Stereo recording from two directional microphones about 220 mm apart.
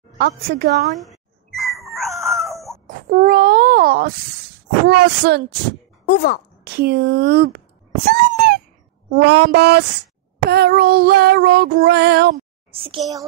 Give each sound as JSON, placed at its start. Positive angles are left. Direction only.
{"t": 0.2, "sound": "child singing", "side_deg": -50}
{"t": 0.9, "sound": "a sound", "side_deg": 0}
{"t": 2.9, "sound": "a sound", "side_deg": -40}
{"t": 4.8, "sound": "child singing", "side_deg": -50}
{"t": 6.0, "sound": "speech", "side_deg": 45}
{"t": 6.6, "sound": "child singing", "side_deg": -45}
{"t": 8.1, "sound": "a sound", "side_deg": -45}
{"t": 9.1, "sound": "child singing", "side_deg": -50}
{"t": 12.7, "sound": "a child's voice", "side_deg": -25}